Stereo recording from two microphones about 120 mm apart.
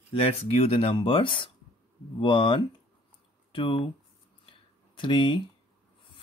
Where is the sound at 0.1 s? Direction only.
55° left (ahead or behind).